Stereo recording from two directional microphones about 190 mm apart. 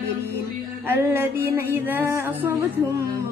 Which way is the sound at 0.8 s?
10° right (ahead or behind).